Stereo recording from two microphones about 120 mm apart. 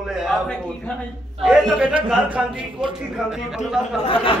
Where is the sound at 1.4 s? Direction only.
5° right (ahead or behind).